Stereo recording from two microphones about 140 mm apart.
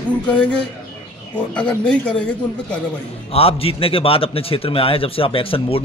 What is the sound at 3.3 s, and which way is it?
A man's voice, 45° left (ahead or behind).